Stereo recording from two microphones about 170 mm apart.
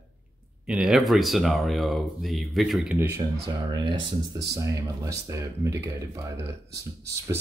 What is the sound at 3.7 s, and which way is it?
Speech, 25° right (ahead or behind).